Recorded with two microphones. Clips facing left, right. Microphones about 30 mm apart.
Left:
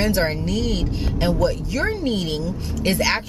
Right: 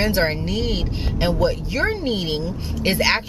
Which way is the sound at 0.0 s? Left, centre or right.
Centre.